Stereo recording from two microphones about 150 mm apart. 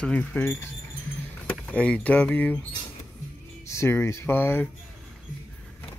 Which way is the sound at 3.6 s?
20° left (ahead or behind).